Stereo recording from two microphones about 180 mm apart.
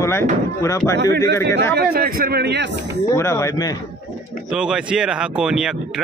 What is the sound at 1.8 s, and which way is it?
Speech, 60° right (ahead or behind).